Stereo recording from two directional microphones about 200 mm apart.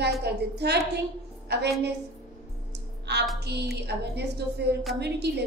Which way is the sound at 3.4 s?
55° right (ahead or behind).